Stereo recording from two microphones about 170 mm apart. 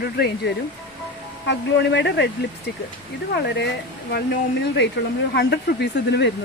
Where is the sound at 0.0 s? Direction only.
70° left (ahead or behind).